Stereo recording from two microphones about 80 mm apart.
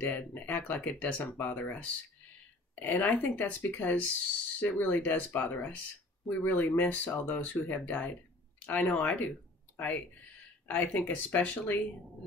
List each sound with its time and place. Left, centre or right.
0.1 s speech: left